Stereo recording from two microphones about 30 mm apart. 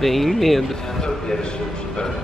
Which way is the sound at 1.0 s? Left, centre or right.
Left.